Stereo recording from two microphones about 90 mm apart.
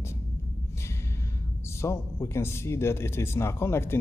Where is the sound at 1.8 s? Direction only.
30° left (ahead or behind).